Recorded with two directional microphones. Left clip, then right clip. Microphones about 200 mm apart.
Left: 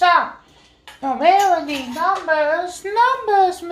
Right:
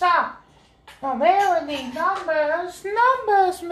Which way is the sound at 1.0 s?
25° left (ahead or behind).